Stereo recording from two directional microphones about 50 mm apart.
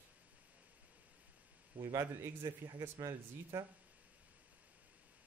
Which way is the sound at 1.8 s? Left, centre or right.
Right.